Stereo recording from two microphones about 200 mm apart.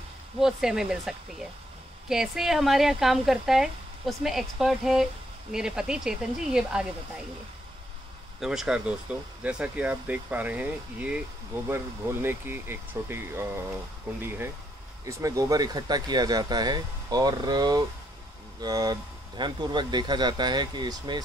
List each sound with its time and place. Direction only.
0.4 s speech: 5° right (ahead or behind)
8.4 s speech: 5° right (ahead or behind); by 21.2 s 20° right (ahead or behind)